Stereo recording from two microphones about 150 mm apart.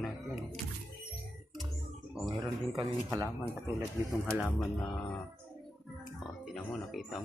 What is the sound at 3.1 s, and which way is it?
Speech, 20° right (ahead or behind).